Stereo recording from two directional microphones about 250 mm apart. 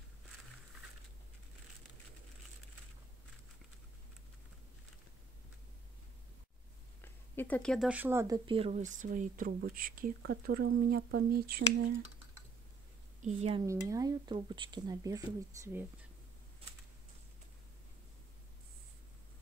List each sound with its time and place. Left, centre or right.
7.0 s speech: centre; by 11.4 s right
13.2 s speech: right
13.7 s speech: centre